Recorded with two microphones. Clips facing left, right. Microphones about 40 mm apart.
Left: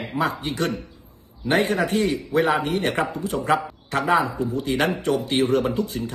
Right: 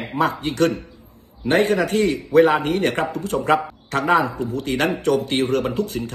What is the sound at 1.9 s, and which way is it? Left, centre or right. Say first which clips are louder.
Speech: right 4 dB; right.